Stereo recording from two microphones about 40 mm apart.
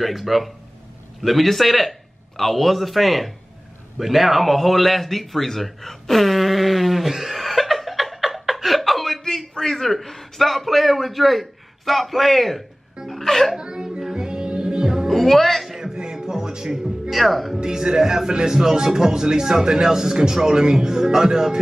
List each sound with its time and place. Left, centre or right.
0.0 s a man's voice: centre
13.2 s music: centre
13.6 s a sound: right
13.8 s music: centre
15.0 s a man's voice: centre
15.7 s music: centre
17.1 s a man's voice: centre
17.6 s speech: centre